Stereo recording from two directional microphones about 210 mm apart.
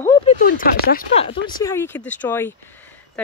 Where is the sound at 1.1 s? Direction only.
25° left (ahead or behind).